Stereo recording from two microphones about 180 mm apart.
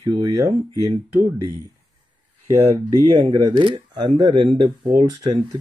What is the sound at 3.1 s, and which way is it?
Speech, 25° right (ahead or behind).